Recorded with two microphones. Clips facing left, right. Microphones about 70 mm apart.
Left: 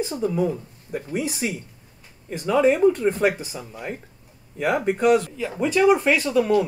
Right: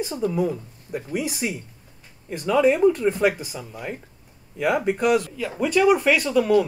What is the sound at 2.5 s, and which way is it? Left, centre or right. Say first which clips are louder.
Speech: even; centre.